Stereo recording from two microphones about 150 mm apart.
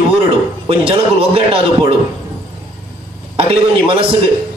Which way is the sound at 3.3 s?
40° right (ahead or behind).